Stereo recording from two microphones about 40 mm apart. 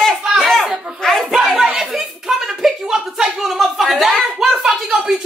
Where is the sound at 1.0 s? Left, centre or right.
Centre.